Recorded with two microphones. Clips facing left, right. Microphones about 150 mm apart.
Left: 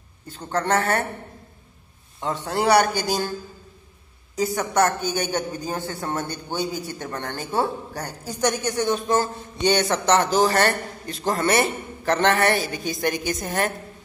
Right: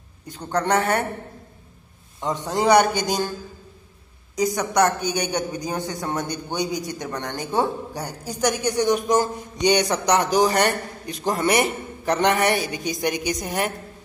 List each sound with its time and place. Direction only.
0.3 s a man's voice: 15° right (ahead or behind)
2.2 s a man's voice: 15° right (ahead or behind)
4.4 s a man's voice: 15° right (ahead or behind)